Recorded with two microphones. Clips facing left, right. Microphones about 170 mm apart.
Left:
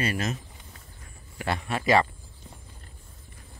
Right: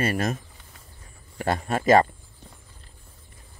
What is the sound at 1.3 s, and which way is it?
Speech, 40° right (ahead or behind).